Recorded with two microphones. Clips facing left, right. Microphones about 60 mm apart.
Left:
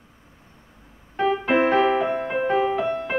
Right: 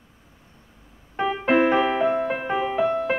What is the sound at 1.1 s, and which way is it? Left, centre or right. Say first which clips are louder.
Keyboard: left 3 dB; centre.